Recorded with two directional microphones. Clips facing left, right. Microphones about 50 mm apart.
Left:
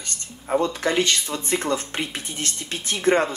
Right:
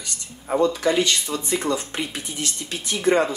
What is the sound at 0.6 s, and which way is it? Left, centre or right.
Speech, left.